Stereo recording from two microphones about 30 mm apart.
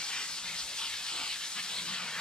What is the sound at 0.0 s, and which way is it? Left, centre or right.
Steam, left.